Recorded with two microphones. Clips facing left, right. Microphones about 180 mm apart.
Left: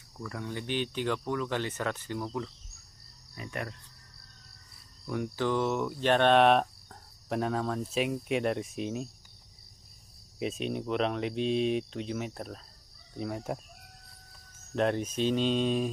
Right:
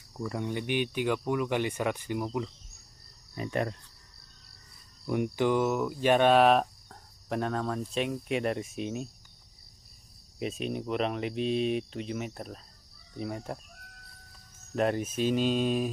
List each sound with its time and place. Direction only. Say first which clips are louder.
0.2 s speech: right 5 dB; 20° right (ahead or behind)
3.3 s cricket: right 7 dB; 30° right (ahead or behind)
5.0 s speech: right 4 dB; 20° right (ahead or behind); by 9.1 s centre (ahead or behind)
10.4 s speech: even; centre (ahead or behind)
14.8 s speech: even; 5° right (ahead or behind)